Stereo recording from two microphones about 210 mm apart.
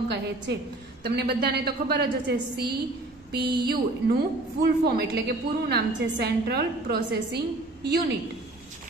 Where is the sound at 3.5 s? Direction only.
50° right (ahead or behind).